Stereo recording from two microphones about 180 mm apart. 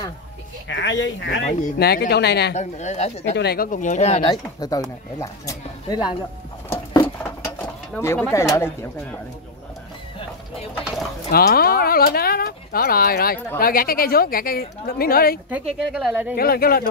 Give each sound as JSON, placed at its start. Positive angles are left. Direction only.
{"t": 0.7, "sound": "speech", "side_deg": 85}
{"t": 2.5, "sound": "speech", "side_deg": 40}
{"t": 3.3, "sound": "speech", "side_deg": 60}
{"t": 4.3, "sound": "speech", "side_deg": 20}
{"t": 7.5, "sound": "speech", "side_deg": 15}
{"t": 10.7, "sound": "bird", "side_deg": -5}
{"t": 11.3, "sound": "speech", "side_deg": 55}
{"t": 15.8, "sound": "speech", "side_deg": -5}
{"t": 16.3, "sound": "speech", "side_deg": 55}